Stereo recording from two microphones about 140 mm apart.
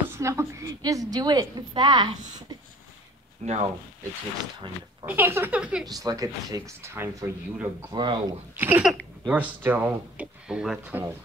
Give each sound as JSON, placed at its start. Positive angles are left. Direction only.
{"t": 0.2, "sound": "a woman's voice", "side_deg": -20}
{"t": 3.4, "sound": "speech", "side_deg": -55}
{"t": 5.0, "sound": "speech", "side_deg": -15}
{"t": 5.9, "sound": "a woman's voice", "side_deg": -25}
{"t": 7.9, "sound": "speech", "side_deg": -35}
{"t": 8.5, "sound": "speech", "side_deg": -15}